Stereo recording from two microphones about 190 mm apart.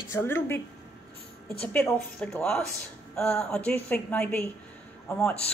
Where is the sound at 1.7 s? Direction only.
5° left (ahead or behind).